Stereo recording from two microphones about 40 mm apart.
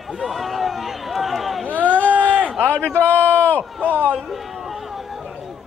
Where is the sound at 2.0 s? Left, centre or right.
Right.